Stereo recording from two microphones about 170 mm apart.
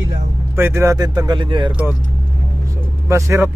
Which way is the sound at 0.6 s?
15° right (ahead or behind).